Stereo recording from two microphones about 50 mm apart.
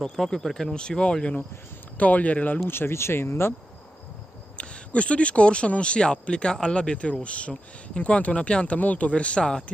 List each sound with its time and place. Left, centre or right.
0.0 s speech: centre
2.0 s speech: left
2.7 s speech: left
4.6 s speech: left
8.7 s speech: left